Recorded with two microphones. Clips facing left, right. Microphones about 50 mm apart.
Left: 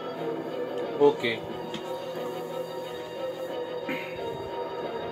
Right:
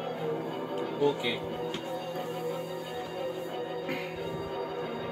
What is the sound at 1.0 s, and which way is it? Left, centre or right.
Speech, left.